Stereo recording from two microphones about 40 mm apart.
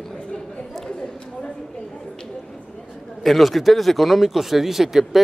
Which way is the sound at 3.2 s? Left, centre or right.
Centre.